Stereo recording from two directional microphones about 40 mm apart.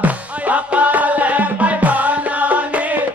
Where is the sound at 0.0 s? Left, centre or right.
Right.